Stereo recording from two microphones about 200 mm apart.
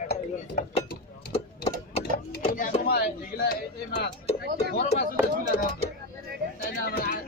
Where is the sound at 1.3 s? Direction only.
30° left (ahead or behind).